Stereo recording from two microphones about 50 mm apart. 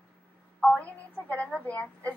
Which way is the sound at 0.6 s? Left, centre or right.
Left.